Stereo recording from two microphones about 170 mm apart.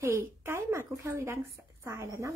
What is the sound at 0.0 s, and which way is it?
A woman's voice, 15° right (ahead or behind).